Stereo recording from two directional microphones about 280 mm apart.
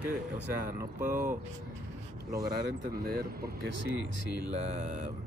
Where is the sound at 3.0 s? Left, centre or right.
Right.